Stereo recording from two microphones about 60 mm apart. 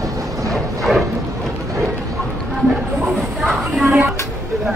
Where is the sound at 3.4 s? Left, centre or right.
Right.